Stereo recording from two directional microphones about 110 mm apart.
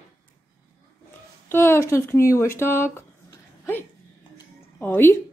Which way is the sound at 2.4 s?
25° left (ahead or behind).